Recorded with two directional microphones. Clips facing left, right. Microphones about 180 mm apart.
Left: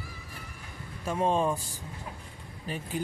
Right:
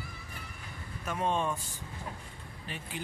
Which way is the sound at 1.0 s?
30° left (ahead or behind).